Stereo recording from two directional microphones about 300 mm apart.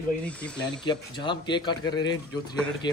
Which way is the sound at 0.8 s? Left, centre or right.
Centre.